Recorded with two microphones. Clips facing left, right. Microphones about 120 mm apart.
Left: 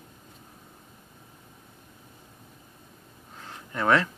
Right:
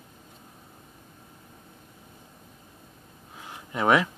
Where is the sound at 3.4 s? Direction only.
15° right (ahead or behind).